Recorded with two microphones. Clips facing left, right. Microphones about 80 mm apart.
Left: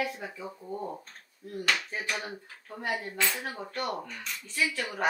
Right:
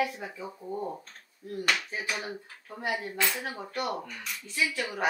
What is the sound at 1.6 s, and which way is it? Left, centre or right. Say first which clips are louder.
Speech: even; centre.